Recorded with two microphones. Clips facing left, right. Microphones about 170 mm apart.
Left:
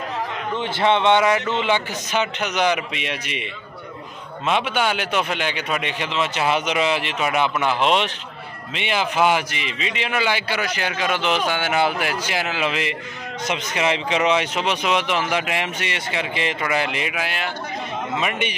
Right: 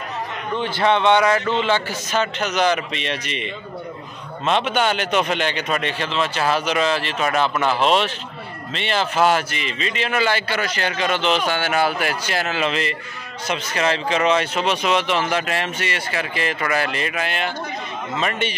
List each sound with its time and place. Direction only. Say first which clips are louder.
0.6 s a man's voice: right 1 dB; 25° left (ahead or behind)
4.5 s a man's voice: right 2 dB; 10° left (ahead or behind)